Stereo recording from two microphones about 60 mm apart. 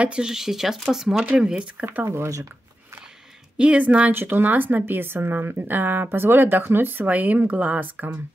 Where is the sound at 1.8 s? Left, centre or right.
Right.